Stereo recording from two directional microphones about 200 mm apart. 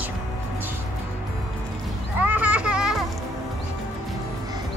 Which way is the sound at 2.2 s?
5° right (ahead or behind).